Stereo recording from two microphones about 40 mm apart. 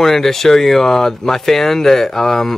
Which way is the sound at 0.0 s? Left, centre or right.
Centre.